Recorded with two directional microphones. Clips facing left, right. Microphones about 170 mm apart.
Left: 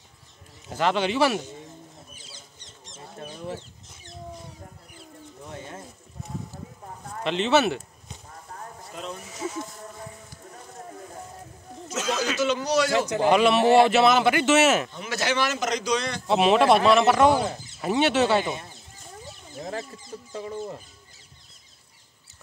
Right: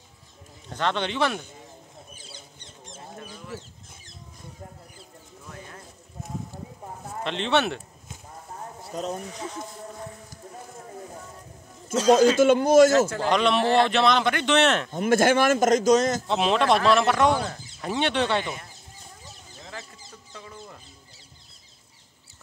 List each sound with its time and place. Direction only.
0.7 s speech: 5° left (ahead or behind)
2.3 s mouse: 55° right (ahead or behind)
7.2 s speech: 5° left (ahead or behind)
8.9 s speech: 40° right (ahead or behind)
9.3 s a man's voice: 5° left (ahead or behind)
11.9 s speech: 30° right (ahead or behind)
12.4 s a man's voice: 50° right (ahead or behind)
13.1 s a man's voice: 10° left (ahead or behind)
14.9 s a man's voice: 50° right (ahead or behind)
16.3 s a man's voice: 5° left (ahead or behind)
18.4 s speech: 25° left (ahead or behind)
19.6 s a sound: 40° left (ahead or behind)
20.3 s speech: 30° left (ahead or behind)